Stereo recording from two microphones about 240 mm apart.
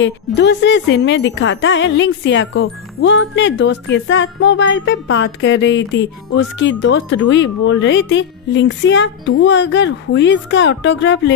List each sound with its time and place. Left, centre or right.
0.0 s a woman's voice: left